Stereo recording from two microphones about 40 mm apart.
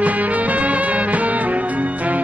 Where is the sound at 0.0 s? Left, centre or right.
Right.